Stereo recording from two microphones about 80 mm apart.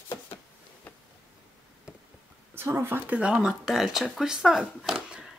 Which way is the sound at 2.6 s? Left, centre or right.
Right.